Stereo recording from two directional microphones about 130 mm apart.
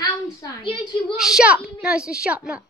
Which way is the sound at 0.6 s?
40° left (ahead or behind).